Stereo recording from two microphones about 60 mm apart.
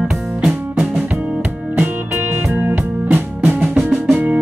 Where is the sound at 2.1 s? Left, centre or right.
Right.